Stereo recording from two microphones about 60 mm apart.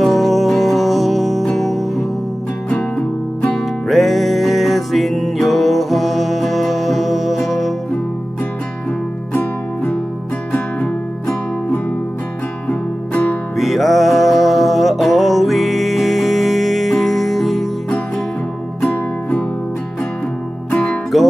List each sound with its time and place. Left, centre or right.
0.0 s music: centre
3.5 s music: centre
10.5 s music: centre
13.6 s music: centre
17.8 s music: centre
20.7 s music: centre